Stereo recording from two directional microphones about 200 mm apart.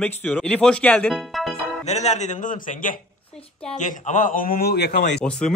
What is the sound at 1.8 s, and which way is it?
Speech, 35° left (ahead or behind).